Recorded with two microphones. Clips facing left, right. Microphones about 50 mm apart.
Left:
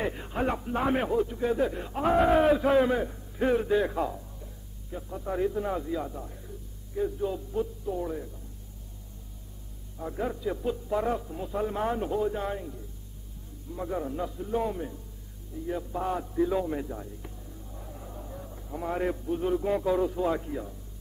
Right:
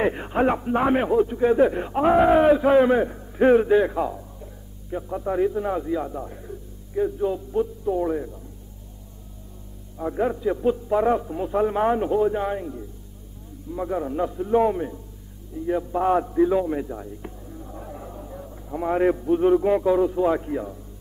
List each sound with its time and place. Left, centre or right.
0.0 s a man's voice: right
2.1 s a man's voice: centre
3.0 s a man's voice: right
3.9 s music: centre
4.9 s a man's voice: right
5.3 s a man's voice: centre
6.1 s a man's voice: right
7.8 s a man's voice: right
9.9 s a man's voice: right
16.4 s a man's voice: centre
17.2 s hum: right
18.1 s a man's voice: centre